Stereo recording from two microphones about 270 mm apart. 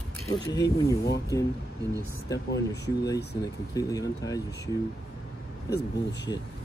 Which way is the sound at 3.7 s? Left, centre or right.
Centre.